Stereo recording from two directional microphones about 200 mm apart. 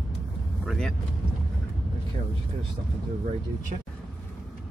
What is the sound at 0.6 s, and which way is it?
Speech, 5° left (ahead or behind).